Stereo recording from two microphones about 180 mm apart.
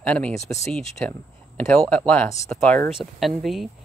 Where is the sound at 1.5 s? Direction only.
5° left (ahead or behind).